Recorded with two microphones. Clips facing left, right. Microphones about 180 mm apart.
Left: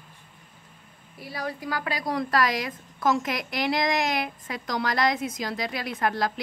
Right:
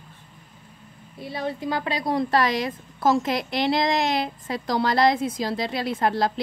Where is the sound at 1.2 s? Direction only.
25° right (ahead or behind).